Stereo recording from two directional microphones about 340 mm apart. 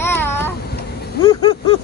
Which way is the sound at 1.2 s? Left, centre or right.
Centre.